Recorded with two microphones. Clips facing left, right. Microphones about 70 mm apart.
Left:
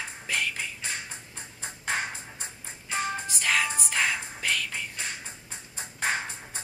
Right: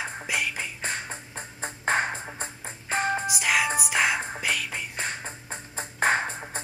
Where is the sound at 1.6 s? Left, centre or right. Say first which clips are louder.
Right 6 dB; right.